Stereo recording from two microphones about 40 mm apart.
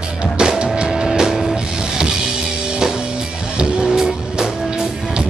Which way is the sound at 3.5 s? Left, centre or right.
Right.